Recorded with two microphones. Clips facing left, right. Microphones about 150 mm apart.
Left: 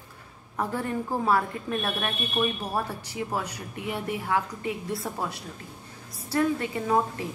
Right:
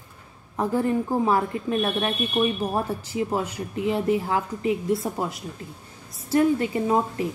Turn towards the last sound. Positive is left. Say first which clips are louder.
# right 3 dB
turn(degrees=-25)  # may be behind; listen again after turning